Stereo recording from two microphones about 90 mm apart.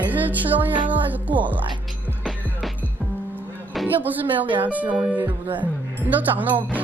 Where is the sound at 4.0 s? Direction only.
20° right (ahead or behind).